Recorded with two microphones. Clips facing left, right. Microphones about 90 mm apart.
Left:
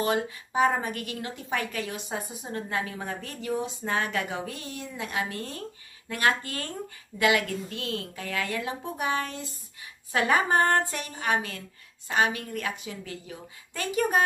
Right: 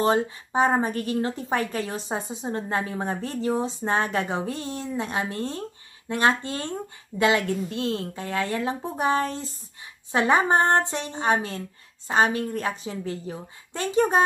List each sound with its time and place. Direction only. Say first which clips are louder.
0.0 s a woman's voice: right 5 dB; 30° right (ahead or behind)